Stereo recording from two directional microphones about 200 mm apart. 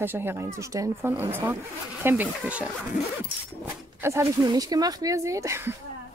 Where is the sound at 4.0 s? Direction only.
15° right (ahead or behind).